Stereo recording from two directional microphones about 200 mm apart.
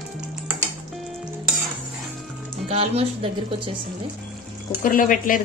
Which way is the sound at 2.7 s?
30° right (ahead or behind).